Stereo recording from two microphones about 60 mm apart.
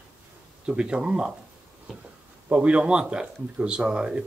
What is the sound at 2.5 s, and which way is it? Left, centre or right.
Speech, centre.